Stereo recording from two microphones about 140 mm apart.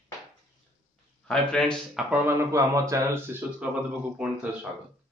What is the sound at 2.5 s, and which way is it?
A man's voice, 20° right (ahead or behind).